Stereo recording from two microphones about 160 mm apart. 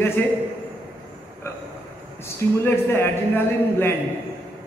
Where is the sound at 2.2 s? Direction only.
15° left (ahead or behind).